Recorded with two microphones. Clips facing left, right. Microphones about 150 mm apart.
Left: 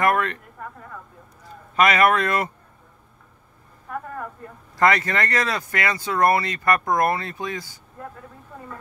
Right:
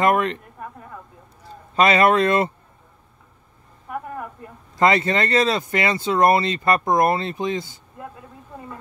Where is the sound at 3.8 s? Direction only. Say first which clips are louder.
Right 1 dB; 15° right (ahead or behind).